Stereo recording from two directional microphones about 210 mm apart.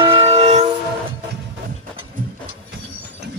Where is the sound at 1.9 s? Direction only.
25° right (ahead or behind).